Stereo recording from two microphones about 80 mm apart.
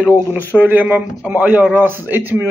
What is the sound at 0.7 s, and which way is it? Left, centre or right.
A man's voice, centre.